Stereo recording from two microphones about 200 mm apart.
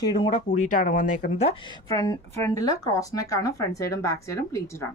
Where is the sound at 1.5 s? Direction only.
25° left (ahead or behind).